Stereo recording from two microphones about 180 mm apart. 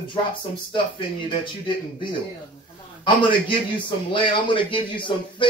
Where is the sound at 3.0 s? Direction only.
25° left (ahead or behind).